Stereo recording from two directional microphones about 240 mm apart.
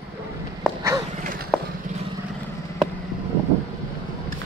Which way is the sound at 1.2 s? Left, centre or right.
Right.